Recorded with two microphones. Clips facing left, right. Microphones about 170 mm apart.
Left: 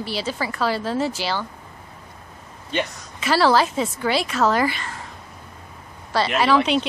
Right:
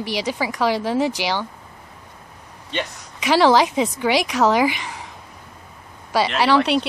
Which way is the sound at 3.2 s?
15° right (ahead or behind).